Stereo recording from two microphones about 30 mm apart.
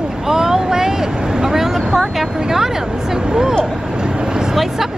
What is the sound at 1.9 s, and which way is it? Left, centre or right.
Speech, centre.